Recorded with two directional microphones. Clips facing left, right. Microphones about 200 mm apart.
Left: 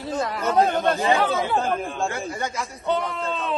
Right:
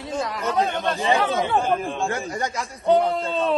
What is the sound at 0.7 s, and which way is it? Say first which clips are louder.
Speech: left 2 dB; centre (ahead or behind).